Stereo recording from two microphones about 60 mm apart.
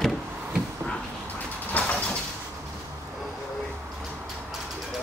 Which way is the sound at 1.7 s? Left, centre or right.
Left.